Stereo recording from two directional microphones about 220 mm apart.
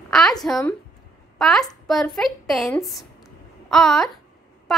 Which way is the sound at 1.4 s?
Centre (ahead or behind).